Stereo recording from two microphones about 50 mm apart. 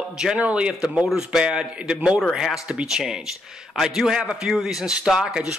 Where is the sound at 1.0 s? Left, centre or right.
Centre.